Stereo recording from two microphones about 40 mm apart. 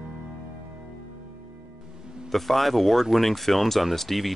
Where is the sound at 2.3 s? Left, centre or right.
Centre.